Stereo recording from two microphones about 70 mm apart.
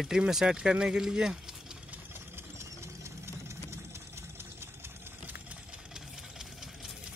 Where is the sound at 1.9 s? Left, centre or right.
Right.